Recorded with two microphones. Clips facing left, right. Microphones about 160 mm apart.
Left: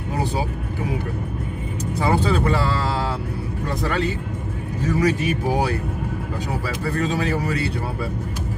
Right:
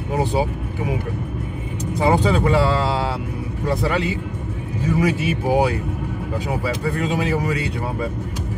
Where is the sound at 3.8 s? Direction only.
15° right (ahead or behind).